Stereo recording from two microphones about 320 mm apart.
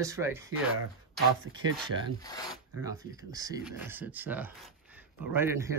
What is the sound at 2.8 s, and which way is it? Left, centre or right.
A man's voice, centre.